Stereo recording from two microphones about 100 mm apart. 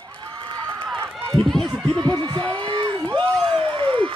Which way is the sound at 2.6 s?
55° right (ahead or behind).